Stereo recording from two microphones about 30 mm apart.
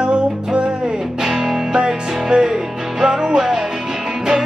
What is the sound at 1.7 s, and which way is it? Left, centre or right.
Music, right.